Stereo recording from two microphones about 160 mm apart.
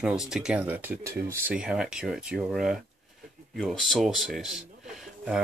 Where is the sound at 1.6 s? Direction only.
5° right (ahead or behind).